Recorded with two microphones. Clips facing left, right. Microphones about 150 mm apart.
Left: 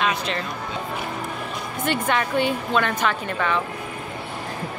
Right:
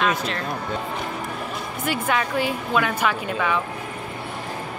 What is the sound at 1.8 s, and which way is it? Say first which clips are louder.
A woman's voice: left 1 dB; 5° right (ahead or behind).